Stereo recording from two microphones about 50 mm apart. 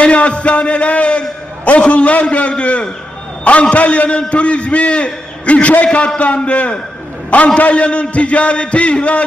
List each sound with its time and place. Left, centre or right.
0.0 s a man's voice: left